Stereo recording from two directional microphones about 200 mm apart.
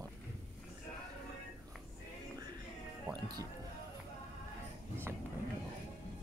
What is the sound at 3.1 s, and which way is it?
Speech, 20° right (ahead or behind).